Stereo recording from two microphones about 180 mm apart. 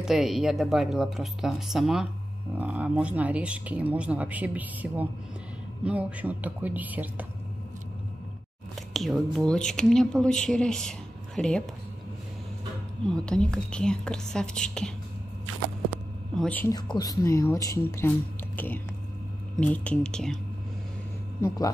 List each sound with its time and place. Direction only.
0.0 s speech: centre (ahead or behind)
8.9 s speech: centre (ahead or behind)
13.0 s speech: 5° left (ahead or behind)
16.3 s speech: 10° left (ahead or behind)
16.9 s speech: 20° left (ahead or behind)
19.6 s speech: 5° left (ahead or behind)
21.4 s speech: 15° left (ahead or behind)